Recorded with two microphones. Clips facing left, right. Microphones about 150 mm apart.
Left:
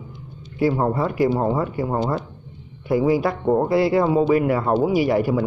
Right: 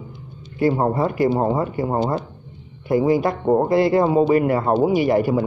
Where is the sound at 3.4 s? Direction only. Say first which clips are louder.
Right 1 dB; 20° right (ahead or behind).